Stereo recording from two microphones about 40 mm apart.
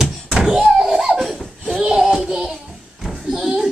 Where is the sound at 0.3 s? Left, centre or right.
Centre.